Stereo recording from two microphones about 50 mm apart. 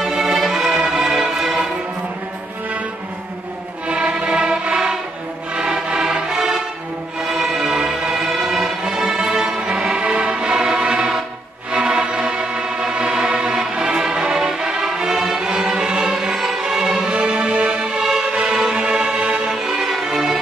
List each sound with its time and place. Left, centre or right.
0.0 s music: centre
3.8 s music: right
19.5 s violin: centre